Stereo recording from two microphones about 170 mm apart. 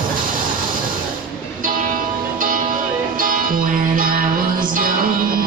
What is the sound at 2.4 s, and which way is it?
Music, 55° right (ahead or behind).